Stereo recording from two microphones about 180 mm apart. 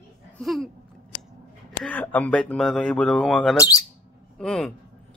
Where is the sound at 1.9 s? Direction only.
10° left (ahead or behind).